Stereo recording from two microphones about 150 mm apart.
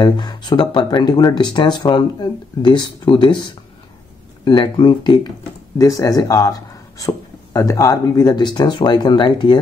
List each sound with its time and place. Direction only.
0.0 s speech: 30° left (ahead or behind)